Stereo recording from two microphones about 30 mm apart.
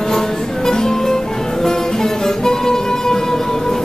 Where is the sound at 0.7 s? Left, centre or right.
Centre.